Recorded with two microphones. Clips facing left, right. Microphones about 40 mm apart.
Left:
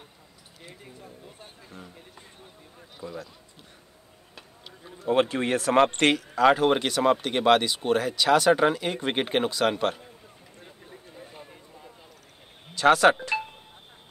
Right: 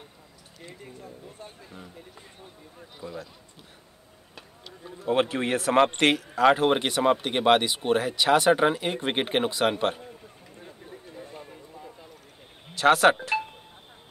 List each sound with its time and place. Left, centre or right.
0.6 s a sound: centre
3.0 s a man's voice: centre
4.9 s a man's voice: centre
5.9 s speech: centre
10.6 s a sound: centre
12.8 s speech: centre